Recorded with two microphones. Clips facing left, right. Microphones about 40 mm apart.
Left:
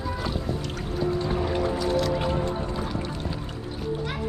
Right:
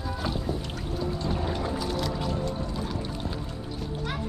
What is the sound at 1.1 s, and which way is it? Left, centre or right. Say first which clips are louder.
Music: left 4 dB; centre.